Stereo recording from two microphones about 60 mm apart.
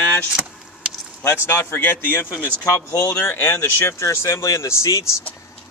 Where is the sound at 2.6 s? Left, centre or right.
Left.